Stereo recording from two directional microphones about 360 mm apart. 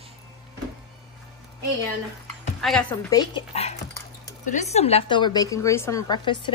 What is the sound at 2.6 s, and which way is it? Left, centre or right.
A woman's voice, centre.